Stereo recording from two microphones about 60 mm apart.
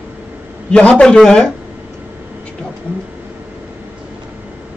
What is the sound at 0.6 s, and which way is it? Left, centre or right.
Speech, centre.